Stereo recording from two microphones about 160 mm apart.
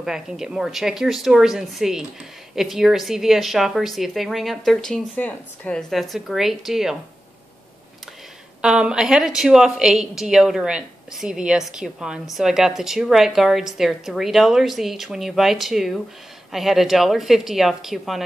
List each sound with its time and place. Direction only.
0.0 s speech: 5° right (ahead or behind)
8.5 s speech: 5° right (ahead or behind)